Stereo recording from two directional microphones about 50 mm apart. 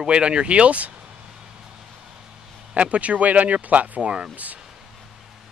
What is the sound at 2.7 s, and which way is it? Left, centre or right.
Speech, right.